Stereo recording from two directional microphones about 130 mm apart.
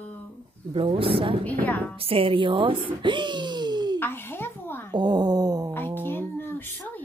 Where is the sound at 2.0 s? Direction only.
45° right (ahead or behind).